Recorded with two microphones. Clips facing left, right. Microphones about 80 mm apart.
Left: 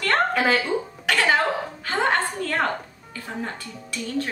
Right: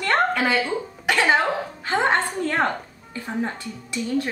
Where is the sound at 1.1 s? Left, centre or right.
Right.